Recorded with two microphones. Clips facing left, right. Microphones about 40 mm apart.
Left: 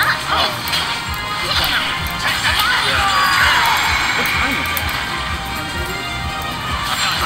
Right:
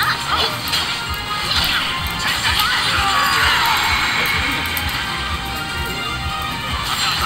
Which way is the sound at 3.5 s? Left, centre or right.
Centre.